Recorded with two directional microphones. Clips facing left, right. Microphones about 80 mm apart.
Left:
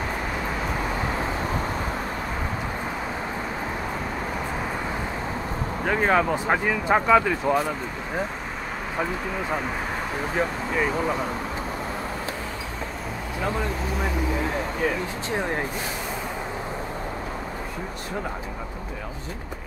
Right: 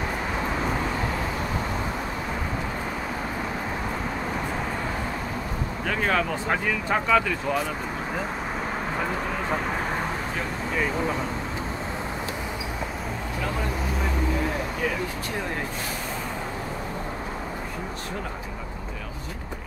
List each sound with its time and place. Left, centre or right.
5.9 s speech: centre